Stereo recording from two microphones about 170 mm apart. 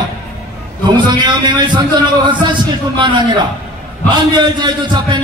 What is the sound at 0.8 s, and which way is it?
A man's voice, 25° right (ahead or behind).